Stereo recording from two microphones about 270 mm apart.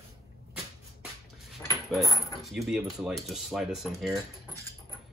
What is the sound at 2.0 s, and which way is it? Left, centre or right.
Speech, centre.